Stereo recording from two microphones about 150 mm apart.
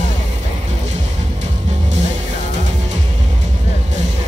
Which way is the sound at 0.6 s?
50° right (ahead or behind).